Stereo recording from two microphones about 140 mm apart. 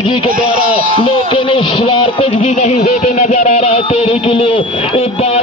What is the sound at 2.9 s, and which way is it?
Music, 75° left (ahead or behind).